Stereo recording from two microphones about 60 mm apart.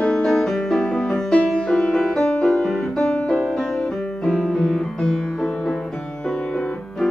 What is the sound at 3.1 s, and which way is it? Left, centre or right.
Music, centre.